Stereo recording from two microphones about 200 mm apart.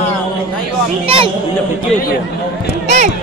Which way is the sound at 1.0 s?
25° right (ahead or behind).